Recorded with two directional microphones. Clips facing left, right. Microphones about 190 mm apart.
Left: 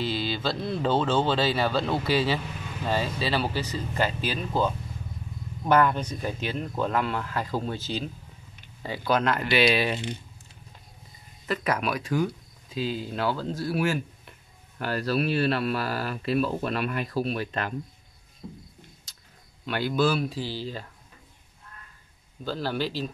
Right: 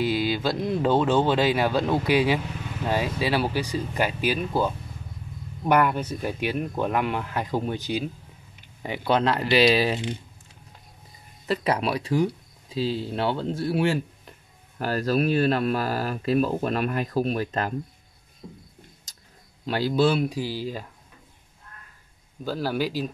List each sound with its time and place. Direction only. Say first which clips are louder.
0.0 s speech: right 4 dB; 10° right (ahead or behind); by 9.9 s 35° right (ahead or behind)
11.4 s a man's voice: right 3 dB; 30° right (ahead or behind)
14.8 s speech: right 3 dB; 45° right (ahead or behind)
19.6 s speech: right 3 dB; 35° right (ahead or behind)
20.2 s speech: right 3 dB; 10° right (ahead or behind)
22.4 s speech: right 3 dB; 10° right (ahead or behind)